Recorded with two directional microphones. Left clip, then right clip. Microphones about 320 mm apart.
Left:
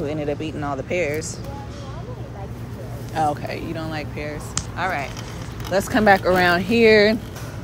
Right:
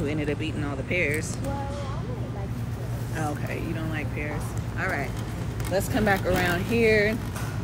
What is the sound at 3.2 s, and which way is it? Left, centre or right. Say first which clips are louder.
Speech: left 9 dB; centre.